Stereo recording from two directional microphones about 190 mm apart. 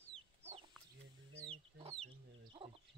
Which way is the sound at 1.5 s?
30° right (ahead or behind).